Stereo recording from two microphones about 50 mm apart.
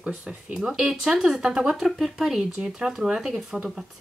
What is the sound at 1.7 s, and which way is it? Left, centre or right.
Speech, centre.